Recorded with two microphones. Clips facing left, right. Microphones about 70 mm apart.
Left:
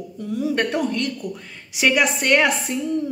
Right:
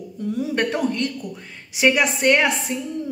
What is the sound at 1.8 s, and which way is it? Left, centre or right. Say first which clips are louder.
Speech: right 1 dB; right.